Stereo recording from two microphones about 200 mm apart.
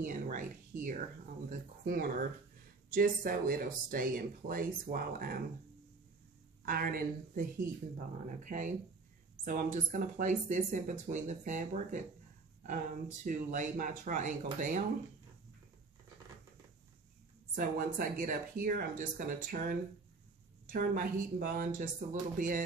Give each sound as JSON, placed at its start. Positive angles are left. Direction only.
{"t": 0.0, "sound": "speech", "side_deg": -40}
{"t": 6.6, "sound": "speech", "side_deg": -45}
{"t": 8.5, "sound": "speech", "side_deg": -40}
{"t": 17.6, "sound": "speech", "side_deg": -45}